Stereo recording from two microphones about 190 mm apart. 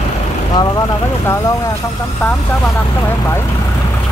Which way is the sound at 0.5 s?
15° left (ahead or behind).